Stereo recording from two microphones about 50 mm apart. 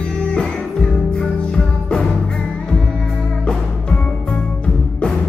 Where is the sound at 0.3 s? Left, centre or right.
Centre.